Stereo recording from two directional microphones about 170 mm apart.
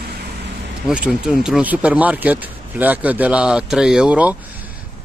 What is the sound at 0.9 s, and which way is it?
Speech, 5° right (ahead or behind).